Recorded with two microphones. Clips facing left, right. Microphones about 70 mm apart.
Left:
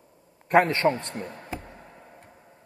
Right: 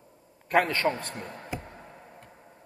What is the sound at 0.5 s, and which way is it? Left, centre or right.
Speech, left.